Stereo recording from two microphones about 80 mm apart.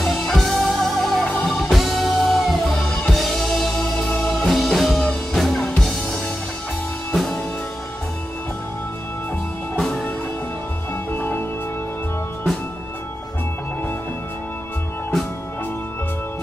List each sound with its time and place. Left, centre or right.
0.0 s music: centre
9.8 s music: centre
11.1 s music: left